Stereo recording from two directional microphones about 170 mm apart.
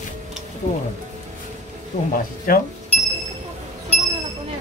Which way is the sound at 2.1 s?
55° left (ahead or behind).